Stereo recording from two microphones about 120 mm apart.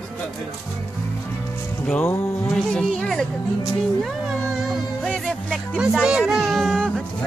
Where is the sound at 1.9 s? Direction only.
15° left (ahead or behind).